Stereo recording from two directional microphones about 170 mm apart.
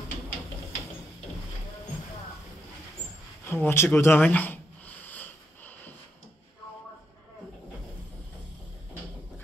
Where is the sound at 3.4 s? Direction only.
15° left (ahead or behind).